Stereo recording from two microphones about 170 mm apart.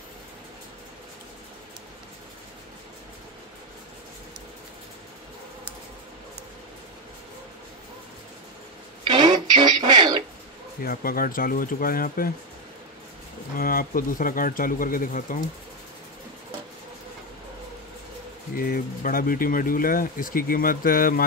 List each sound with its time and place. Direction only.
9.0 s a sound: 25° right (ahead or behind)
10.8 s speech: 60° left (ahead or behind)
13.6 s speech: 60° left (ahead or behind)
18.6 s speech: 55° left (ahead or behind)